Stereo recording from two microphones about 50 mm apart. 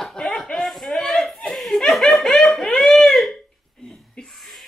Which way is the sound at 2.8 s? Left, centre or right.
Centre.